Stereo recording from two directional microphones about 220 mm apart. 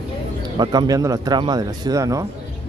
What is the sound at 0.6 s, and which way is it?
Speech, 20° right (ahead or behind).